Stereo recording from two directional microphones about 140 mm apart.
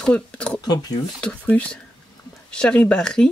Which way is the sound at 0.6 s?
30° left (ahead or behind).